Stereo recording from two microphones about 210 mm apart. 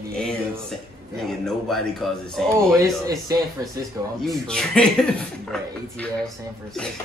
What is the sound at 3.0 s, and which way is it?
Speech, 20° right (ahead or behind).